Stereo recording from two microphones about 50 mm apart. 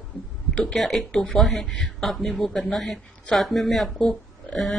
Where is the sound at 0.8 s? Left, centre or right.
Centre.